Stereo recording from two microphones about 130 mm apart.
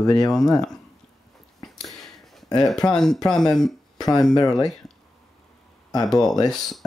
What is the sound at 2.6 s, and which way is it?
Speech, 5° left (ahead or behind).